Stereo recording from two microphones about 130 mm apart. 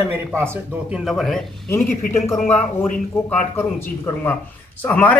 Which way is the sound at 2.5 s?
15° left (ahead or behind).